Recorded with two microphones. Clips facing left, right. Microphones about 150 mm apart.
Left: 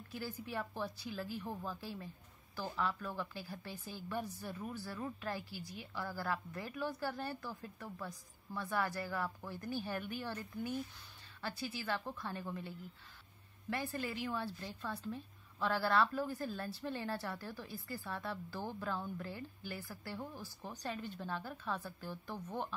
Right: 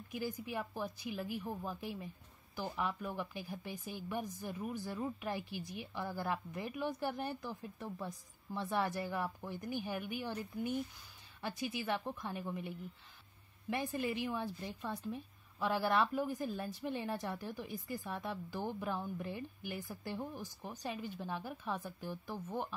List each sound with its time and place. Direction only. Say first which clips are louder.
0.1 s speech: right 3 dB; 15° right (ahead or behind)